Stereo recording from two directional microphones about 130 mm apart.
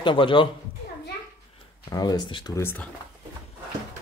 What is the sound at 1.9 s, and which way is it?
Speech, 30° left (ahead or behind).